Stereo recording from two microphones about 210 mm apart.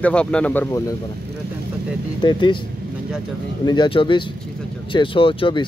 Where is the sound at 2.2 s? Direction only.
20° left (ahead or behind).